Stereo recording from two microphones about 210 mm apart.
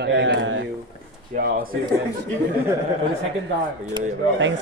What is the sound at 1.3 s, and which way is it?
Speech, 45° right (ahead or behind).